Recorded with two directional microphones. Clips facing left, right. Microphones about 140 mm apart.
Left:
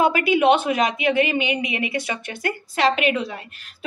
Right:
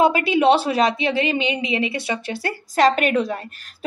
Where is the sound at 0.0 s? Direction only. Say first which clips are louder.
Right 1 dB; 25° right (ahead or behind).